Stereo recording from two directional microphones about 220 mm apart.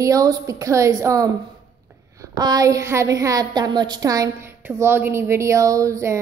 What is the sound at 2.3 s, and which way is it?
A woman's voice, 15° right (ahead or behind).